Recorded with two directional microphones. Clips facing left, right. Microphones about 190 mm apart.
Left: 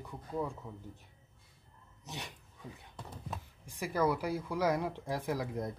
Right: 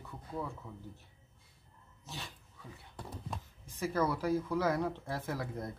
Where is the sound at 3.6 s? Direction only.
15° left (ahead or behind).